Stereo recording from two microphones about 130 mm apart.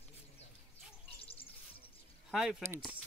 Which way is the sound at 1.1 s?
45° left (ahead or behind).